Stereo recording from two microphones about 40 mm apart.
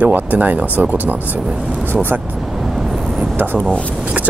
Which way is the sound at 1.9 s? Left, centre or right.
Right.